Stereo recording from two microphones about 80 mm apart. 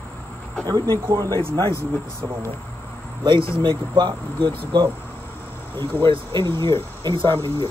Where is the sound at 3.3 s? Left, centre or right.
Right.